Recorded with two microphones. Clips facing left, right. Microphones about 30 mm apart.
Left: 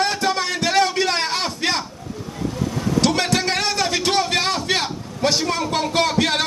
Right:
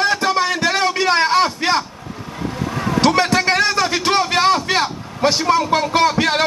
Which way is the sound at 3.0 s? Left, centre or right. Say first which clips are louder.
Right 6 dB; centre.